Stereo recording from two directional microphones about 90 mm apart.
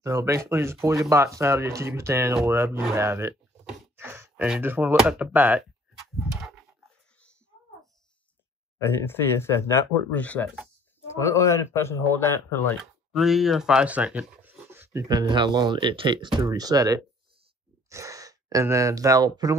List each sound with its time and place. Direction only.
0.0 s speech: 35° right (ahead or behind)
3.9 s a sound: 25° right (ahead or behind)
4.6 s speech: 20° right (ahead or behind)
5.6 s a sound: centre (ahead or behind)
8.8 s speech: 25° left (ahead or behind)
10.1 s speech: 15° left (ahead or behind)
11.1 s speech: 35° left (ahead or behind)
13.1 s speech: centre (ahead or behind); by 15.0 s 25° right (ahead or behind)
15.0 s speech: 55° right (ahead or behind)
16.3 s speech: 45° right (ahead or behind)